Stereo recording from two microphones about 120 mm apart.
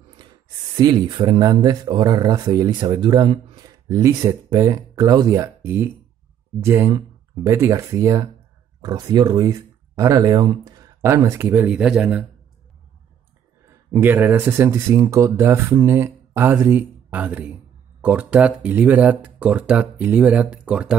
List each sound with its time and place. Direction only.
0.2 s a sound: 40° right (ahead or behind)
0.7 s speech: 40° right (ahead or behind)
11.5 s speech: 15° right (ahead or behind)
13.7 s speech: 20° right (ahead or behind)